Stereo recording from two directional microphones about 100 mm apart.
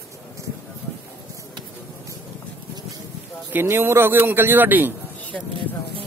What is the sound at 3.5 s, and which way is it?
Speech, 25° right (ahead or behind).